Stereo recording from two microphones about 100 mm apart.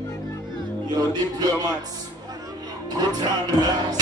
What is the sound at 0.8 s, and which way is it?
Music, 40° right (ahead or behind).